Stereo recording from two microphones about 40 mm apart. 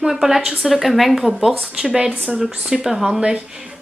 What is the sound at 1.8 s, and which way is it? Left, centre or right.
A woman's voice, centre.